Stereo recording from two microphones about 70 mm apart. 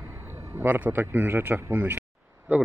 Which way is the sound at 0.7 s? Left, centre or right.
Right.